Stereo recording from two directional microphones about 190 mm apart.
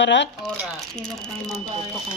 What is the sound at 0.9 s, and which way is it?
Speech, 5° left (ahead or behind).